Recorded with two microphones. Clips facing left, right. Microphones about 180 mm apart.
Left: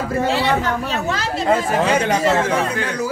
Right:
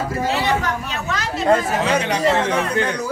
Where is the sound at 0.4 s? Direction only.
30° left (ahead or behind).